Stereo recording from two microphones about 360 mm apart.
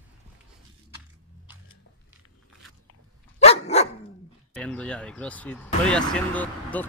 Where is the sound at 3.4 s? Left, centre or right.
Centre.